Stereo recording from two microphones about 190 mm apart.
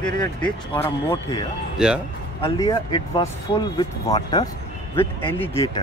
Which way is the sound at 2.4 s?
20° left (ahead or behind).